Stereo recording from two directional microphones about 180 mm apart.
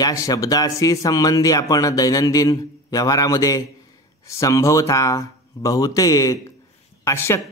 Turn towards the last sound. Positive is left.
turn(degrees=15)  # may be behind; listen again after turning